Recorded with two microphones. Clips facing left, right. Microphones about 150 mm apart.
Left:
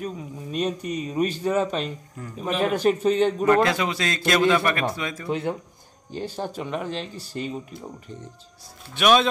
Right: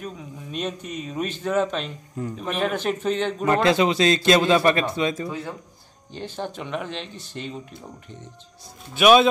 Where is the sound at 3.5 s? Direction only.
25° right (ahead or behind).